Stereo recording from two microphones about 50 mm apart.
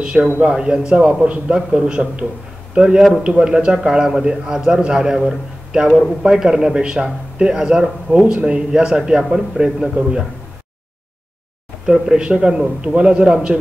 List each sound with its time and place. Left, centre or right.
0.0 s a man's voice: right
11.8 s a man's voice: centre